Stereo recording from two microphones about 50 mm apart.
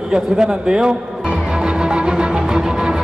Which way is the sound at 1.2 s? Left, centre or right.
Centre.